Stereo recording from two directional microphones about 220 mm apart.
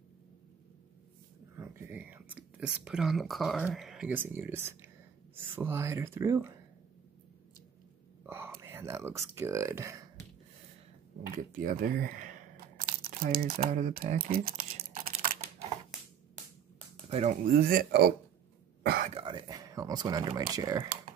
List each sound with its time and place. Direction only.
1.6 s speech: 5° right (ahead or behind)
8.3 s speech: 10° right (ahead or behind)
11.3 s a sound: 40° right (ahead or behind)
13.6 s typing: 35° right (ahead or behind)
17.1 s speech: 35° right (ahead or behind)
18.8 s whispering: 45° right (ahead or behind)
19.1 s speech: 20° right (ahead or behind)